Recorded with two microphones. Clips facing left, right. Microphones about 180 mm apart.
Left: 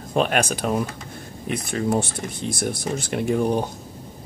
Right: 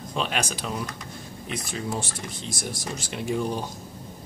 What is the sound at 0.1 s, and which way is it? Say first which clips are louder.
Speech: left 8 dB; 55° left (ahead or behind).